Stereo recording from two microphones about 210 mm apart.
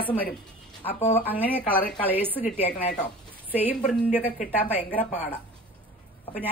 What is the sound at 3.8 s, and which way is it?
Speech, 5° left (ahead or behind).